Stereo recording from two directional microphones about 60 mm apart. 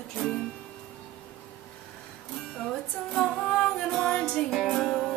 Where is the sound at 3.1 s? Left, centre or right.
Centre.